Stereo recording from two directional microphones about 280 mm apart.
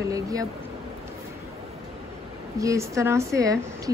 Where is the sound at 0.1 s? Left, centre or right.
Centre.